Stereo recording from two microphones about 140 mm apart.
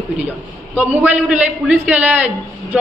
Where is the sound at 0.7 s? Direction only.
10° right (ahead or behind).